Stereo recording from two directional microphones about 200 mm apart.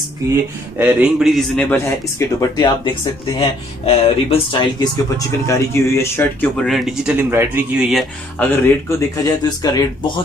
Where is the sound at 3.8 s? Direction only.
25° left (ahead or behind); by 8.5 s centre (ahead or behind).